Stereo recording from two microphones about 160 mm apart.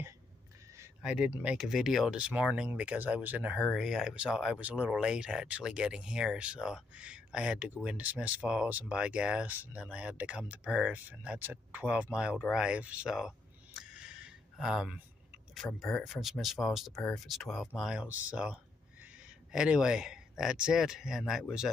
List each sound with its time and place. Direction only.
1.0 s speech: 5° right (ahead or behind)
13.7 s a sound: 5° right (ahead or behind)
15.5 s speech: centre (ahead or behind)